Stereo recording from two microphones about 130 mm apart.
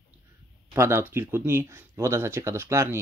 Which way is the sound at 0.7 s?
20° right (ahead or behind).